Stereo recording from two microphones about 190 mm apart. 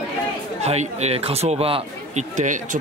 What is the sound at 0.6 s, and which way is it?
Speech, 35° right (ahead or behind).